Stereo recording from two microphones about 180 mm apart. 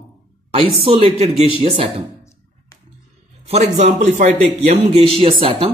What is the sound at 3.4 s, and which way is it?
Speech, 35° right (ahead or behind).